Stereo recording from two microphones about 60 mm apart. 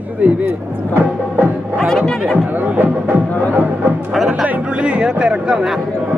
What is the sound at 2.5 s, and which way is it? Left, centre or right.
Speech, right.